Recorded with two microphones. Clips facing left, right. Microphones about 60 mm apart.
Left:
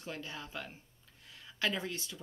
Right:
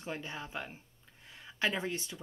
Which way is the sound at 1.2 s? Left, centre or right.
Right.